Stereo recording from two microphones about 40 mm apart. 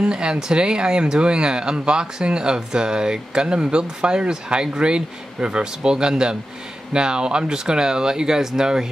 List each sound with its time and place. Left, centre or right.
0.0 s speech: right